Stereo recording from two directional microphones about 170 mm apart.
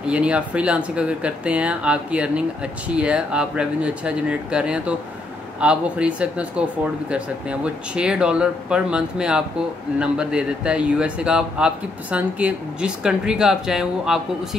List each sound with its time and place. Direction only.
0.0 s speech: 5° right (ahead or behind)